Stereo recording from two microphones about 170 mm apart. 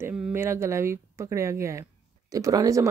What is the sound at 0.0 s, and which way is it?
Speech, 15° right (ahead or behind).